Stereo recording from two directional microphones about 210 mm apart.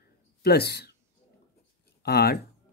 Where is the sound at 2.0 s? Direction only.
50° left (ahead or behind).